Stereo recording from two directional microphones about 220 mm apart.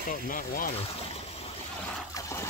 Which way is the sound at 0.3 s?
40° left (ahead or behind).